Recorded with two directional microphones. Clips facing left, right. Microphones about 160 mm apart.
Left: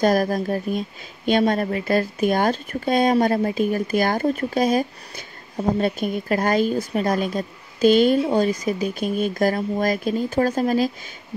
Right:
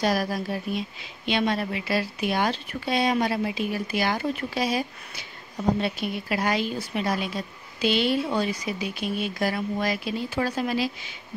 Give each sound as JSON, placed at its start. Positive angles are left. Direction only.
{"t": 0.0, "sound": "speech", "side_deg": 45}